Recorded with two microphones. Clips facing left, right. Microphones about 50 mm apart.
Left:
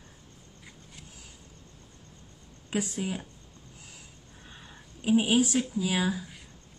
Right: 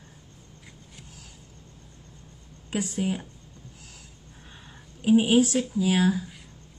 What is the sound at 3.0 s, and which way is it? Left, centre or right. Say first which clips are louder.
Speech: right 5 dB; centre.